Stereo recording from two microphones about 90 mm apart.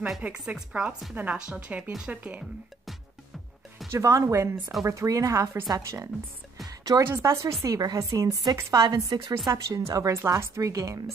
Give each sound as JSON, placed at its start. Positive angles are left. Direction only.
{"t": 0.0, "sound": "speech", "side_deg": -10}
{"t": 3.9, "sound": "a woman's voice", "side_deg": -35}
{"t": 8.8, "sound": "speech", "side_deg": -55}
{"t": 9.5, "sound": "a woman's voice", "side_deg": -40}
{"t": 10.1, "sound": "a woman's voice", "side_deg": -30}